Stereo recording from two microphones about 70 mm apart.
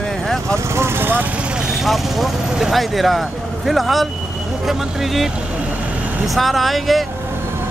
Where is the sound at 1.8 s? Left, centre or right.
Centre.